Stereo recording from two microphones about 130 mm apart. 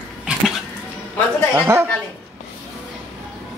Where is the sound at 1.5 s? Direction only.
20° right (ahead or behind).